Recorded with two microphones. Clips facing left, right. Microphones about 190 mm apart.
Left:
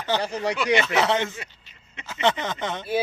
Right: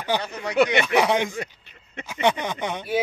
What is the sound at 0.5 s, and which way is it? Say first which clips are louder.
Speech: right 5 dB; 60° right (ahead or behind).